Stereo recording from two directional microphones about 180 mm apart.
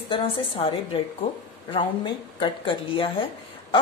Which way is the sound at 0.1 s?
30° left (ahead or behind).